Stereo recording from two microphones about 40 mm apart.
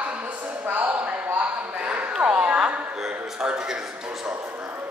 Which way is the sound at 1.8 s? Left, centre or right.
Right.